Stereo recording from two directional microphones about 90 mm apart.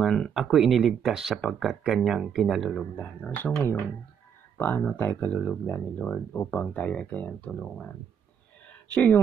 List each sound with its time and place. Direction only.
0.0 s speech: centre (ahead or behind)
2.8 s speech: 15° left (ahead or behind)
3.5 s speech: 30° left (ahead or behind)
8.9 s speech: 15° left (ahead or behind)